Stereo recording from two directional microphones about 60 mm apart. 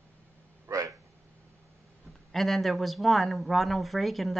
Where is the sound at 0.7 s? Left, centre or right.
Right.